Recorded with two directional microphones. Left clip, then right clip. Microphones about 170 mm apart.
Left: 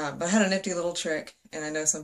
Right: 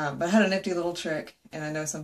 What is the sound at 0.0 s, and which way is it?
Speech, 10° left (ahead or behind).